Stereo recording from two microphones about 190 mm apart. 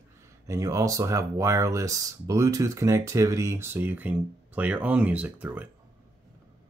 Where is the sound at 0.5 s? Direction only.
15° right (ahead or behind).